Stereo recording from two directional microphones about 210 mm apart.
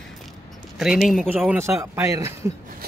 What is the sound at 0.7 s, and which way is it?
A man's voice, centre (ahead or behind).